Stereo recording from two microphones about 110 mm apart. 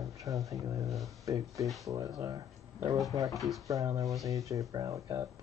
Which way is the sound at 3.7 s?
30° right (ahead or behind).